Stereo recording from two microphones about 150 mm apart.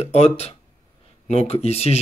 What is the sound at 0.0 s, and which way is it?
Speech, 45° left (ahead or behind).